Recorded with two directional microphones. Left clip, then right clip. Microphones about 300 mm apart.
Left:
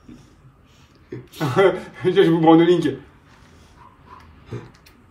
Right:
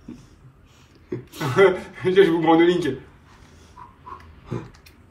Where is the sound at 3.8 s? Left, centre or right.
Centre.